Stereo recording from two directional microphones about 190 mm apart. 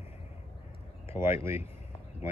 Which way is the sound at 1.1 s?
15° right (ahead or behind).